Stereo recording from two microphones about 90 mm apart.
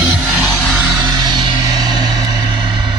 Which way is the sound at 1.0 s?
55° right (ahead or behind).